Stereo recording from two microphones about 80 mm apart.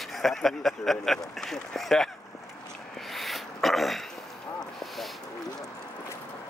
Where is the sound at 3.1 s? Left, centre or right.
Centre.